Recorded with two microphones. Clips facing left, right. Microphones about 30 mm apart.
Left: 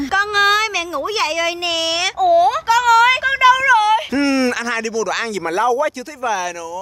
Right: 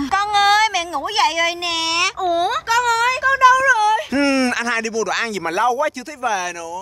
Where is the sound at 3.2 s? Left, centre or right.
Left.